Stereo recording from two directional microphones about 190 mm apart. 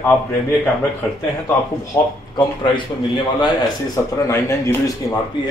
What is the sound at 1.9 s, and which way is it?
A man's voice, 25° left (ahead or behind).